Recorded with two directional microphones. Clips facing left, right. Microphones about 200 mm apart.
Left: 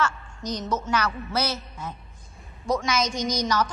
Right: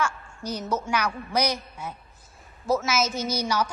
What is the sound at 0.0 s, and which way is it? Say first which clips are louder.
A woman's voice: left 1 dB; 10° right (ahead or behind).